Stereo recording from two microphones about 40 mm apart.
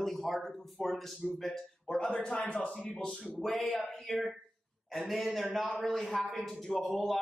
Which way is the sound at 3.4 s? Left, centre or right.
Centre.